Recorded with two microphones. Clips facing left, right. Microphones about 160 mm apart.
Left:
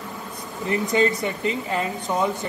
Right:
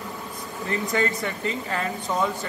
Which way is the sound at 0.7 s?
20° left (ahead or behind).